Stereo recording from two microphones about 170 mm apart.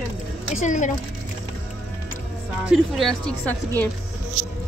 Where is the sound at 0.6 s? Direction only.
45° left (ahead or behind).